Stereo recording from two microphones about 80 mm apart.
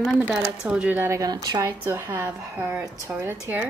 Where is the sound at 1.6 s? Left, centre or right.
Right.